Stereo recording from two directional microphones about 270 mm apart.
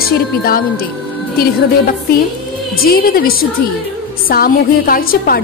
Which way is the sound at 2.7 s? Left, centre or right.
Left.